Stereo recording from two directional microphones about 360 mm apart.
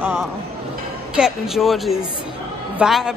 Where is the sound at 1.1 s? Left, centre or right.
Centre.